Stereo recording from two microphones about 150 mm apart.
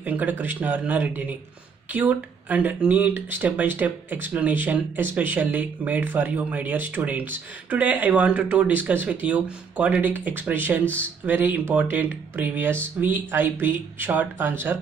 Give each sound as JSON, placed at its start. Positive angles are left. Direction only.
{"t": 0.0, "sound": "speech", "side_deg": -10}